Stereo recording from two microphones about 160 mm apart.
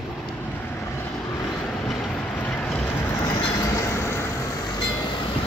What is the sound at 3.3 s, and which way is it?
Train, 20° left (ahead or behind).